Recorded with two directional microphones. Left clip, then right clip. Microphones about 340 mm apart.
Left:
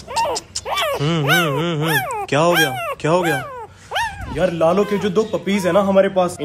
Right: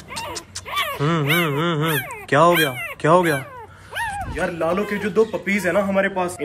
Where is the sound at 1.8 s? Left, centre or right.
Centre.